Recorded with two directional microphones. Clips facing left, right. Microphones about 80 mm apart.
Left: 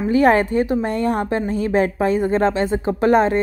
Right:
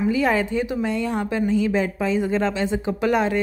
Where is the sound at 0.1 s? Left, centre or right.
Left.